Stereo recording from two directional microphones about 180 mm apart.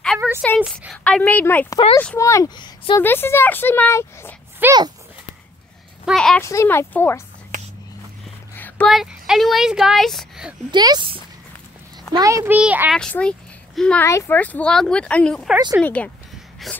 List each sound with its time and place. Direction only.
0.6 s speech: centre (ahead or behind); by 3.0 s 25° left (ahead or behind)
3.0 s speech: 10° left (ahead or behind)
4.6 s a child's voice: 10° right (ahead or behind)
6.0 s speech: 5° left (ahead or behind)
6.4 s speech: 15° left (ahead or behind)
7.5 s whispering: 45° right (ahead or behind)
8.5 s speech: 10° left (ahead or behind)
10.7 s a child's voice: 25° right (ahead or behind); by 12.9 s 10° right (ahead or behind)
12.9 s speech: 5° left (ahead or behind)